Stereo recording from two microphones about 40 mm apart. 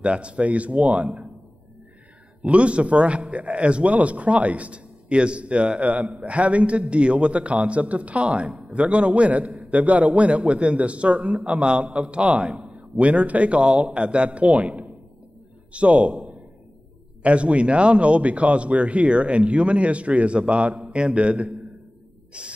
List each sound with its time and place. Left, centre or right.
0.0 s a man's voice: right
2.4 s a man's voice: right
17.2 s a man's voice: right
22.3 s spray: right